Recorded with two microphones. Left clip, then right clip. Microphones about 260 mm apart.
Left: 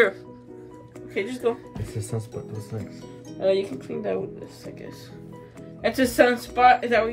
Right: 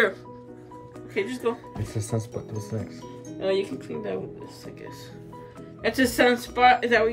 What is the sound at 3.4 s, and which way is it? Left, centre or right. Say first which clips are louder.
Speech: left 3 dB; centre.